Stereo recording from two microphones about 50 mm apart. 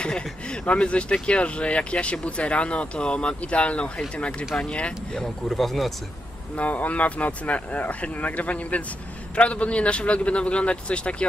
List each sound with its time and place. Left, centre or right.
0.0 s speech: centre
5.1 s speech: centre
6.5 s speech: left